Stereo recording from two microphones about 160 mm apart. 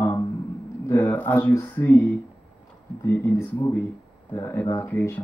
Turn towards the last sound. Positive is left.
turn(degrees=10)  # may be behind; listen again after turning